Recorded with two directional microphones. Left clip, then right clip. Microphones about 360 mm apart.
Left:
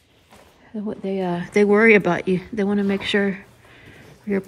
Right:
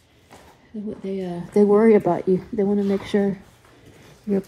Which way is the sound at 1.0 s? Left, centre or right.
Left.